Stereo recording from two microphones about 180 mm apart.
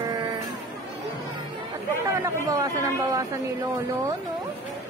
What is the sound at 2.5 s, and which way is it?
Speech, 20° right (ahead or behind).